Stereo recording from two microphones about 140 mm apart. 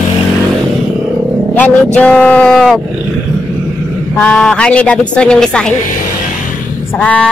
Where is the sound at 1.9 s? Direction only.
10° left (ahead or behind).